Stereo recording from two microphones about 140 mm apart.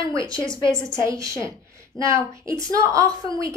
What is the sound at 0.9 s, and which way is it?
A woman's voice, 20° right (ahead or behind).